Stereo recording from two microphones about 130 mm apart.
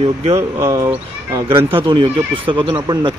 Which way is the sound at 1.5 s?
40° right (ahead or behind).